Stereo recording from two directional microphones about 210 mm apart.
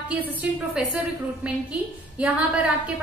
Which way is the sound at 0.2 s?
10° right (ahead or behind).